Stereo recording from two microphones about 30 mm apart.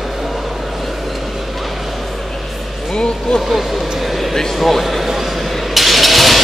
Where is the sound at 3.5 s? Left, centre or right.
Centre.